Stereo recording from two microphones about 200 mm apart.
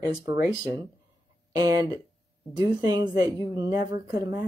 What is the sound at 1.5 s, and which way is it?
Speech, 20° right (ahead or behind).